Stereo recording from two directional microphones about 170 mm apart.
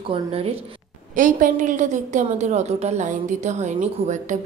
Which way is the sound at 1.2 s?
50° right (ahead or behind).